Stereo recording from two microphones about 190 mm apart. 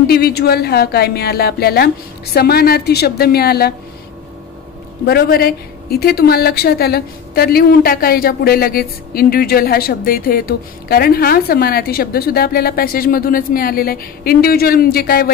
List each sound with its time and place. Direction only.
0.0 s a woman's voice: 55° left (ahead or behind)
5.0 s a woman's voice: 55° left (ahead or behind)